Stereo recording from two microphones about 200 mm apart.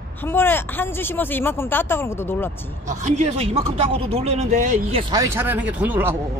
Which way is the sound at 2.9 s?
35° right (ahead or behind).